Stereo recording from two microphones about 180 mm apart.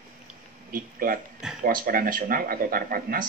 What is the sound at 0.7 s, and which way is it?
A man's voice, 55° right (ahead or behind).